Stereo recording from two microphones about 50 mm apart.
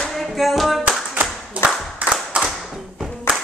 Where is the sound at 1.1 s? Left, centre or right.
Right.